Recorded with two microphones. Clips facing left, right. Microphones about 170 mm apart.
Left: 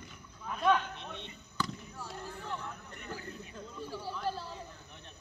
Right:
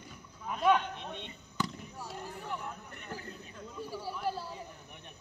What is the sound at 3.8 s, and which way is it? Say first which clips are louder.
Speech: right 1 dB; 10° right (ahead or behind).